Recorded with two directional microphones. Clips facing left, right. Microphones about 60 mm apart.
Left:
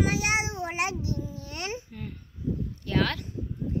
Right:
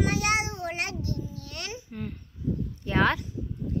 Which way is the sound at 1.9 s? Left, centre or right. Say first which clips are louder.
Right 4 dB; centre.